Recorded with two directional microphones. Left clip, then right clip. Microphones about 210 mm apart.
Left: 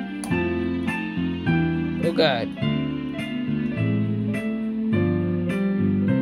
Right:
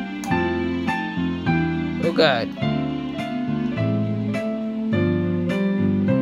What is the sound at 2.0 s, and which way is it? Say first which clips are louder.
Music: right 3 dB; 5° right (ahead or behind).